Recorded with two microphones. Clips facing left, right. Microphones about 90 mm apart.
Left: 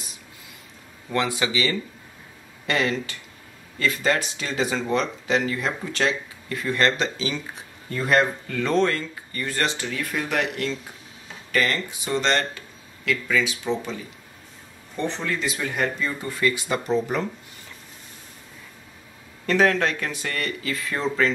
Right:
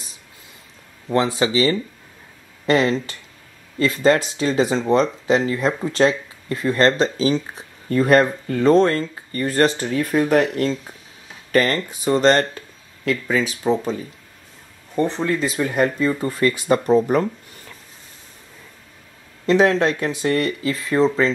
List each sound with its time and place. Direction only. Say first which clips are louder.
1.0 s speech: right 6 dB; 30° right (ahead or behind)
15.0 s speech: right 7 dB; 35° right (ahead or behind)
19.4 s speech: right 4 dB; 25° right (ahead or behind)